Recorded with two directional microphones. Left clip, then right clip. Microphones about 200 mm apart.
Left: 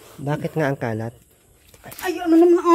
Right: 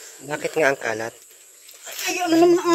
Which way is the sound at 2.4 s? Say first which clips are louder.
Left 1 dB; 55° left (ahead or behind).